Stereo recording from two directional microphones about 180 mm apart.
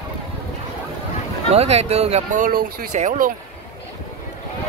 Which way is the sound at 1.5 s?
35° right (ahead or behind).